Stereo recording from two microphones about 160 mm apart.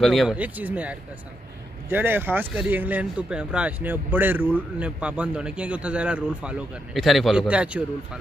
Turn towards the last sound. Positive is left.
turn(degrees=-5)  # may be behind; listen again after turning